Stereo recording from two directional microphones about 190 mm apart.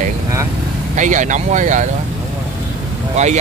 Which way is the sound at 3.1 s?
35° right (ahead or behind).